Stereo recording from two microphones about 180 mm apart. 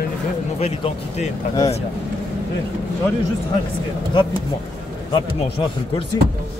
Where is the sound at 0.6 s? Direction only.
35° left (ahead or behind).